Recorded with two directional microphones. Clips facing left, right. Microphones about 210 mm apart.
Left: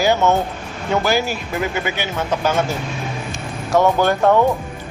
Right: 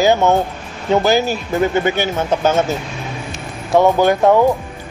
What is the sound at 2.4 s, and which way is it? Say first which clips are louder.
Speech: right 3 dB; 25° right (ahead or behind).